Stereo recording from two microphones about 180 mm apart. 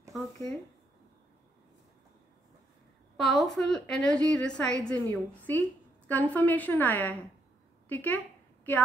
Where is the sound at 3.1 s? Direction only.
Centre (ahead or behind).